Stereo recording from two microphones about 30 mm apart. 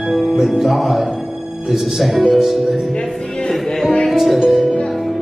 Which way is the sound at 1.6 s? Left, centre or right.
Centre.